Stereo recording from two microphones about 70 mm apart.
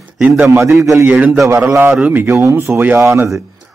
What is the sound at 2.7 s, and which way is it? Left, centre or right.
Speech, right.